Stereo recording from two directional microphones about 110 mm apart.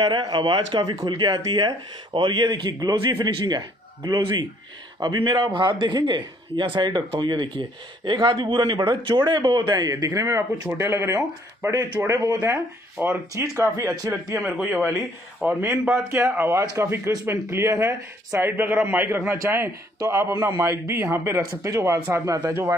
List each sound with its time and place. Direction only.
0.3 s a man's voice: 45° right (ahead or behind)
15.4 s speech: 15° right (ahead or behind)